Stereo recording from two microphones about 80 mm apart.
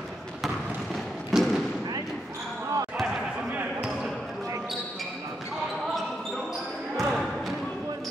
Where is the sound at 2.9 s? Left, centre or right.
Centre.